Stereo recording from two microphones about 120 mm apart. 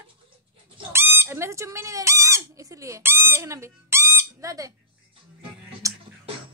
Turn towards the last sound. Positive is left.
turn(degrees=-25)  # may be behind; listen again after turning